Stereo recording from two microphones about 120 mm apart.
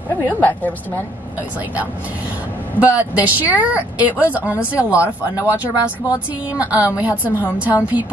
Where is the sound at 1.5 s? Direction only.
15° right (ahead or behind).